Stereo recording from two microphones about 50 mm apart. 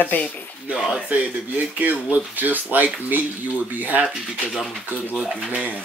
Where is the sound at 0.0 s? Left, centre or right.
Left.